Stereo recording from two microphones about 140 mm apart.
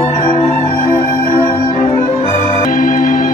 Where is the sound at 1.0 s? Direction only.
40° left (ahead or behind).